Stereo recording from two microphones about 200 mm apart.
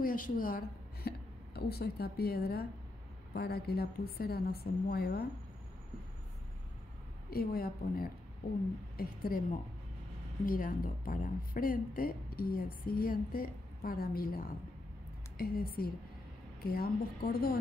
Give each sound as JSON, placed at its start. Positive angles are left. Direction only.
{"t": 0.0, "sound": "a woman's voice", "side_deg": 45}
{"t": 7.2, "sound": "speech", "side_deg": 50}